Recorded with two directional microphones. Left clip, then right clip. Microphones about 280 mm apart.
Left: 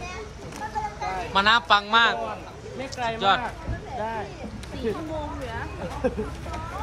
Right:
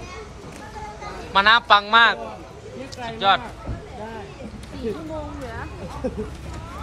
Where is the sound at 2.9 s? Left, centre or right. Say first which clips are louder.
Left 5 dB; left.